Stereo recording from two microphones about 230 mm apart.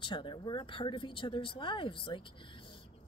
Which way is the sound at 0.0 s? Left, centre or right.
Left.